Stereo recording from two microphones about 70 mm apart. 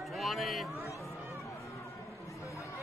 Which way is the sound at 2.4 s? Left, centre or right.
Left.